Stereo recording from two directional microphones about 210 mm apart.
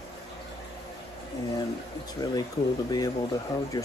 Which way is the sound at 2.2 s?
20° left (ahead or behind).